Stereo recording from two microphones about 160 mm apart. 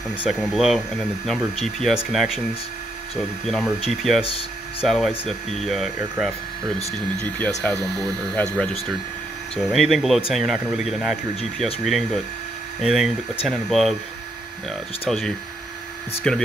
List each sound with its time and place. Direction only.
0.2 s speech: centre (ahead or behind)
3.4 s speech: centre (ahead or behind)
4.2 s speech: 35° left (ahead or behind)
4.8 s speech: centre (ahead or behind)
7.6 s speech: 5° left (ahead or behind)